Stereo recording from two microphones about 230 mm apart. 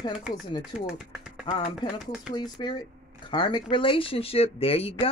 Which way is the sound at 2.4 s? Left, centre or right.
Centre.